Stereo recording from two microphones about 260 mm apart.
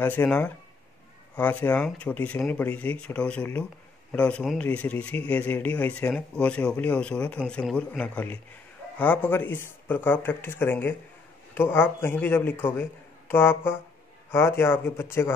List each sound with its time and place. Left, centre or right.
0.0 s speech: centre